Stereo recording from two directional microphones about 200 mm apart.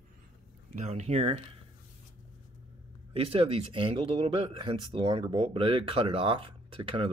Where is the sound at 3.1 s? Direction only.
25° right (ahead or behind).